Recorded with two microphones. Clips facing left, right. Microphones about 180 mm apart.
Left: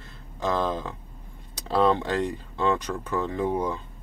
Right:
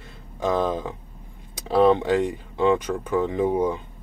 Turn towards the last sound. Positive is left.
turn(degrees=-15)  # may be behind; listen again after turning